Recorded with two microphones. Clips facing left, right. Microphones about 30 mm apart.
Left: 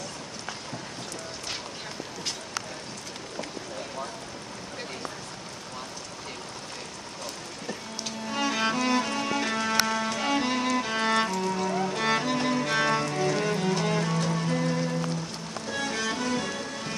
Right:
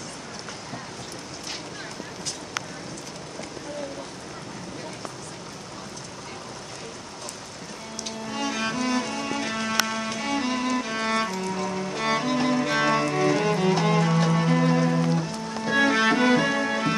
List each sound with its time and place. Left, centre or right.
8.0 s cello: centre
9.8 s music: centre; by 16.9 s right